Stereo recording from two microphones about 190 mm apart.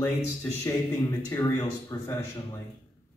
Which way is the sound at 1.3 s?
20° left (ahead or behind).